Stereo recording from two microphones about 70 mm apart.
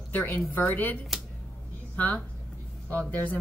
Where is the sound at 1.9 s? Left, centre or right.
Left.